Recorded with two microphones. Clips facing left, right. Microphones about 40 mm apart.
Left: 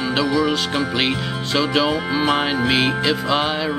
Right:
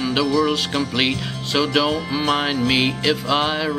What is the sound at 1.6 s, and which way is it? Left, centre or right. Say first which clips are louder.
Music: left 1 dB; centre.